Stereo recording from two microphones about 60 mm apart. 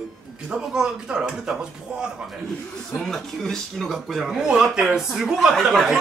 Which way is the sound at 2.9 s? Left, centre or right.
Centre.